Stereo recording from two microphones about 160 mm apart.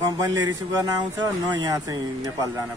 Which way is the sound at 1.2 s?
25° right (ahead or behind).